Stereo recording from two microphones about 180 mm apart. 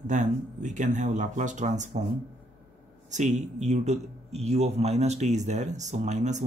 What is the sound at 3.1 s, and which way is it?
A man's voice, 40° right (ahead or behind).